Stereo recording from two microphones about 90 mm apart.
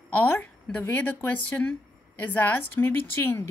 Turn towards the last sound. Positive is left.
turn(degrees=25)  # may be behind; listen again after turning